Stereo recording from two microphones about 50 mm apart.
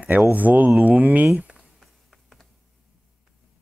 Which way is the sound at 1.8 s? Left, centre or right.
Centre.